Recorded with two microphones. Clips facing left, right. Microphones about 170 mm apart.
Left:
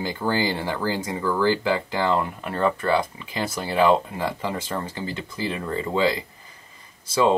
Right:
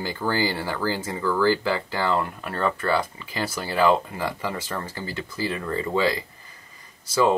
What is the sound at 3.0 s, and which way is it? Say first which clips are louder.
Speech: left 1 dB; 25° left (ahead or behind).